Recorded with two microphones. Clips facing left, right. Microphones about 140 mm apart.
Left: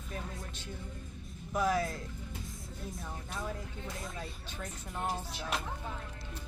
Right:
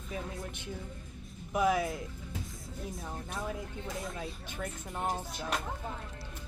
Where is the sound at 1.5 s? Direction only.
15° right (ahead or behind).